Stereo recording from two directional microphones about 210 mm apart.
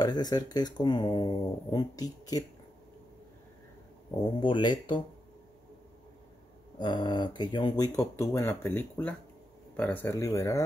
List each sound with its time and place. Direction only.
0.0 s speech: 20° left (ahead or behind)
4.2 s speech: 20° left (ahead or behind)
6.8 s speech: 20° left (ahead or behind)